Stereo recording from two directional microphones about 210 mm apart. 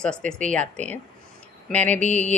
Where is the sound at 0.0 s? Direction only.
5° left (ahead or behind).